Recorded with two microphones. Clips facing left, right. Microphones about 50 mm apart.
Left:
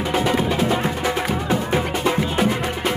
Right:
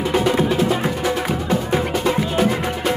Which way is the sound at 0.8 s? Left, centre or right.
Centre.